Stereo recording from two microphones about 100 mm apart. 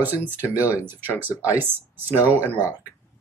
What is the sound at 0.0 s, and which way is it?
Speech, 20° right (ahead or behind).